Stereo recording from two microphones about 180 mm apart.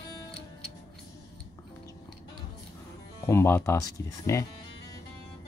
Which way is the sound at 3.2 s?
15° left (ahead or behind).